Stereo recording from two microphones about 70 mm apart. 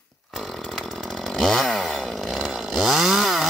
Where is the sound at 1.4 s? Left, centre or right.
Centre.